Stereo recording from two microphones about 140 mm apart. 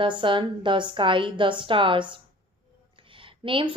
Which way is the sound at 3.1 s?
40° right (ahead or behind).